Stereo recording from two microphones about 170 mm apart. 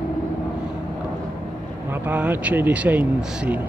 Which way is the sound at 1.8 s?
10° right (ahead or behind).